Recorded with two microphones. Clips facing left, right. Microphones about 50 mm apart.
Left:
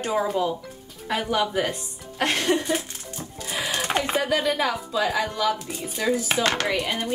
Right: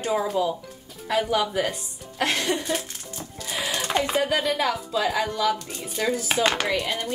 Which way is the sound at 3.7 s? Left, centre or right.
Left.